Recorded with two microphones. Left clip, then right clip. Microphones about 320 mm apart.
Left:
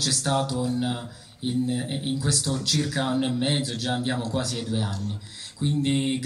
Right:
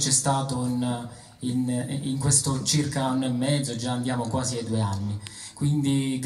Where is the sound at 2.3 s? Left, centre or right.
Centre.